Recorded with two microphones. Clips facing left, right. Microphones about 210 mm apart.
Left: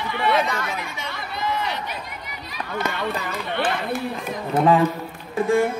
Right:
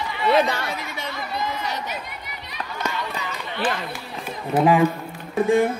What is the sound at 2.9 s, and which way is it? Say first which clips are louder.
Speech: left 3 dB; 55° left (ahead or behind).